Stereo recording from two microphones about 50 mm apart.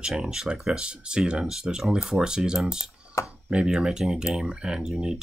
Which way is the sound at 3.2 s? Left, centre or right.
Left.